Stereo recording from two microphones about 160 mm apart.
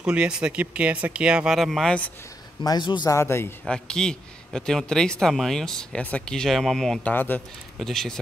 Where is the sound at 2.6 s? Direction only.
25° left (ahead or behind).